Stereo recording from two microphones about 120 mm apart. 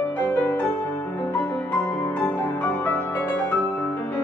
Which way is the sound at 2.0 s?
15° left (ahead or behind).